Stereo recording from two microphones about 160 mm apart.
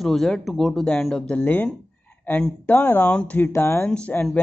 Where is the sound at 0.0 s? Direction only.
Centre (ahead or behind).